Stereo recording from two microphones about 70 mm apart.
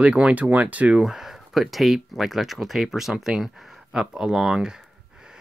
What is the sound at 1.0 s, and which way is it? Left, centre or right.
Speech, centre.